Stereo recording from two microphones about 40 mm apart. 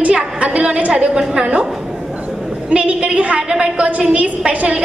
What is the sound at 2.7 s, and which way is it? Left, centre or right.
Speech, right.